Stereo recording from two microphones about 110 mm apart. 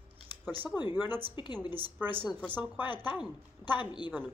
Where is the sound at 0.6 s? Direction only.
40° left (ahead or behind).